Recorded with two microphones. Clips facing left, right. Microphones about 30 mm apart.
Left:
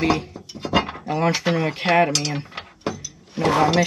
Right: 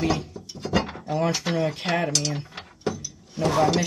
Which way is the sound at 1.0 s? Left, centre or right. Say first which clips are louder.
Left 3 dB; left.